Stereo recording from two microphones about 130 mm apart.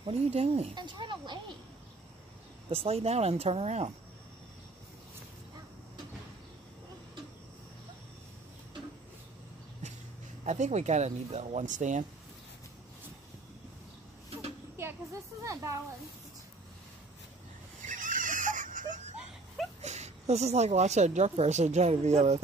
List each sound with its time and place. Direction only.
0.0 s speech: 50° right (ahead or behind)
0.7 s speech: 35° right (ahead or behind)
2.7 s speech: 50° right (ahead or behind)
10.4 s a woman's voice: 65° right (ahead or behind)
15.4 s speech: 25° right (ahead or behind)
17.8 s a sound: 90° right
19.1 s dog: centre (ahead or behind)
19.8 s a woman's voice: 60° right (ahead or behind)